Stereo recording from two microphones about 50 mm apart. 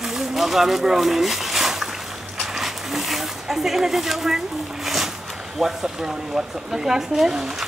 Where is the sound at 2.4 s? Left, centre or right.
Centre.